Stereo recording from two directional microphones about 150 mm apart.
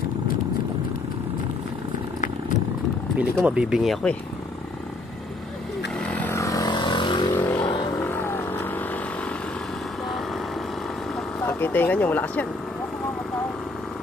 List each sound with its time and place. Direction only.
3.4 s speech: 5° right (ahead or behind)
5.9 s vehicle: 10° left (ahead or behind); by 7.3 s 30° left (ahead or behind)
7.3 s vehicle: 15° left (ahead or behind)
11.4 s speech: 15° left (ahead or behind)